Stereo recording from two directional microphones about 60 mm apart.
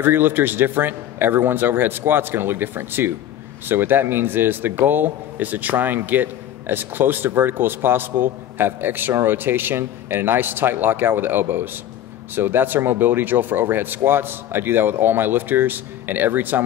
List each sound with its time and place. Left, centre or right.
0.0 s a man's voice: right